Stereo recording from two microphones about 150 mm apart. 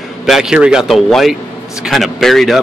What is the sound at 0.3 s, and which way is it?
A man's voice, 5° right (ahead or behind).